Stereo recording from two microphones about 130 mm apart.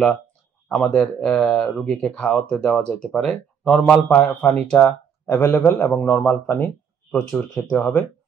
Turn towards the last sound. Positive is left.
turn(degrees=10)  # may be behind; listen again after turning